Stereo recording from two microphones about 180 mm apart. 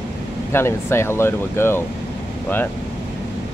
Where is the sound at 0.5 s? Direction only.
15° left (ahead or behind).